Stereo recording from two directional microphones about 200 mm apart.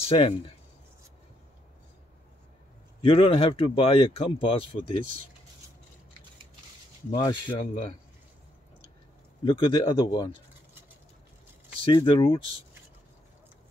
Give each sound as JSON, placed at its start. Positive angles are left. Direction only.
{"t": 0.0, "sound": "speech", "side_deg": 30}
{"t": 3.0, "sound": "speech", "side_deg": 25}
{"t": 7.2, "sound": "speech", "side_deg": 20}
{"t": 9.4, "sound": "speech", "side_deg": 25}
{"t": 11.8, "sound": "speech", "side_deg": 25}